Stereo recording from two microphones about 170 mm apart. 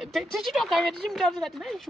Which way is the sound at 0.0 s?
Centre (ahead or behind).